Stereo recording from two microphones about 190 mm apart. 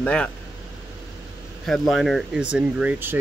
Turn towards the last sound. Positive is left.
turn(degrees=-10)  # may be behind; listen again after turning